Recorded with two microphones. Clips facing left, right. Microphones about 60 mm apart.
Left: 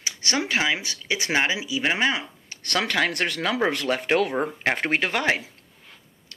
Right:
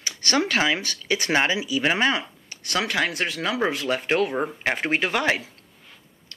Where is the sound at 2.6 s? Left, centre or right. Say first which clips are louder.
Left 1 dB; left.